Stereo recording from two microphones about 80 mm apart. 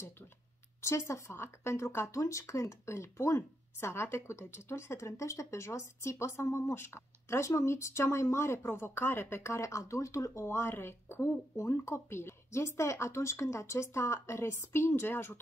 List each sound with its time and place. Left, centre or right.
0.8 s speech: left